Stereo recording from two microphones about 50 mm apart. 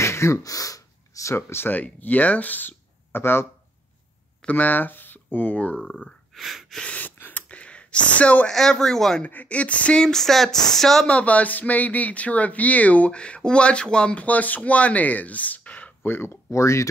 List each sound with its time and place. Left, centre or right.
0.0 s throat clearing: left
1.1 s a sound: left
1.5 s speech: left
4.5 s speech: left
6.3 s breathing: centre
6.8 s gasp: left
7.4 s a sound: left
8.5 s a sound: centre
9.2 s speech: left
9.9 s a sound: centre
11.1 s speech: left
14.2 s speech: left
16.0 s speech: left
16.4 s speech: left